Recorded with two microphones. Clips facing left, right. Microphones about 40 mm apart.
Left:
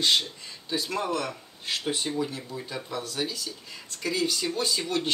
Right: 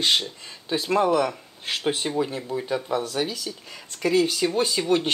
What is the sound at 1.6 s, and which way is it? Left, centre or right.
Speech, right.